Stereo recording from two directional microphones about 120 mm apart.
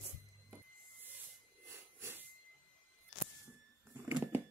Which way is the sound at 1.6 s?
20° right (ahead or behind).